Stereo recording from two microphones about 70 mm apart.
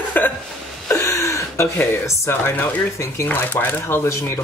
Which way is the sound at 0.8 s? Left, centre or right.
Left.